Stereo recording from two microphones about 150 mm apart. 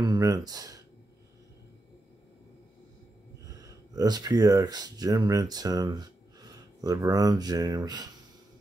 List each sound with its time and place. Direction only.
0.0 s speech: 25° right (ahead or behind)
3.4 s speech: 25° right (ahead or behind)